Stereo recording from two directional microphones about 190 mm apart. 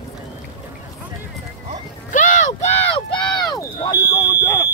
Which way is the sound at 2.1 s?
40° left (ahead or behind).